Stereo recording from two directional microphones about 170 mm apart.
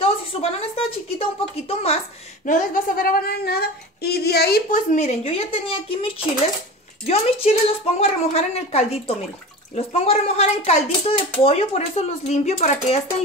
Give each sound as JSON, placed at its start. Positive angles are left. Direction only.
{"t": 0.0, "sound": "a woman's voice", "side_deg": 35}
{"t": 2.4, "sound": "a sound", "side_deg": 50}
{"t": 7.1, "sound": "a woman's voice", "side_deg": 35}